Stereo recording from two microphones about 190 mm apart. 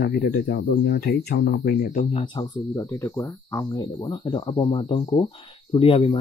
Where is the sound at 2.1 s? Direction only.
20° left (ahead or behind).